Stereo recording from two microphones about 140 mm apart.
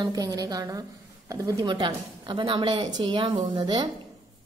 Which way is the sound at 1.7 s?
35° right (ahead or behind).